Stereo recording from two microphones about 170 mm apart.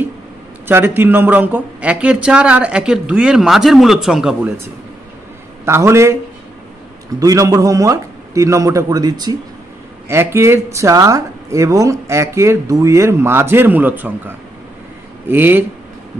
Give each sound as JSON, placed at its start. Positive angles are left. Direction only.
{"t": 0.7, "sound": "speech", "side_deg": -15}
{"t": 5.7, "sound": "speech", "side_deg": -15}
{"t": 7.2, "sound": "a man's voice", "side_deg": -20}